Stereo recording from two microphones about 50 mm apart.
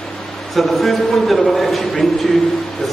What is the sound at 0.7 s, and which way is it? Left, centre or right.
A man's voice, centre.